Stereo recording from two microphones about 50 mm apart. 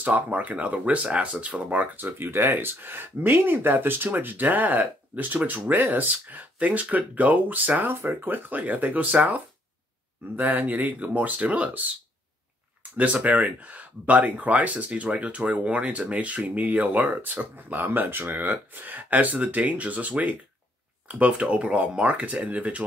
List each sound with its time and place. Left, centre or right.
0.0 s speech: right
2.0 s speech: right
7.9 s speech: right
12.9 s speech: right